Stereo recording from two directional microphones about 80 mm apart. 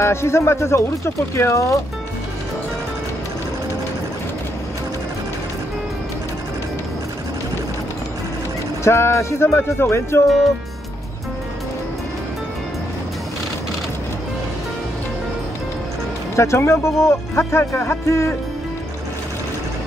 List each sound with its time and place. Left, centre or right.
0.0 s speech: left
8.8 s speech: left
16.3 s speech: left